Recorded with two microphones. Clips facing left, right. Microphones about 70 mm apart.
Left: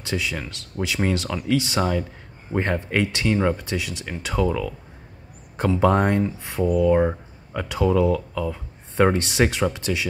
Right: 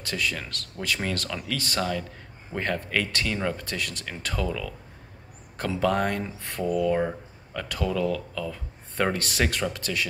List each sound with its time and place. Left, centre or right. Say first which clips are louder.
0.0 s speech: left 3 dB; centre
5.8 s speech: left 5 dB; left
6.4 s speech: left 3 dB; centre